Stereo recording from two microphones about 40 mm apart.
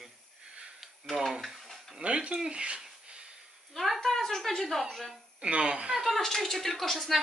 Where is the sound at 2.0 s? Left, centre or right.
Right.